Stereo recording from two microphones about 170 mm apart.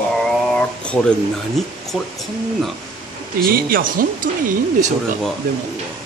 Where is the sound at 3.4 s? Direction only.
60° right (ahead or behind).